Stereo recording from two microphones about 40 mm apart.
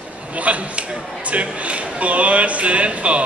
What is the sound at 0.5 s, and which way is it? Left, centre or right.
Speech, right.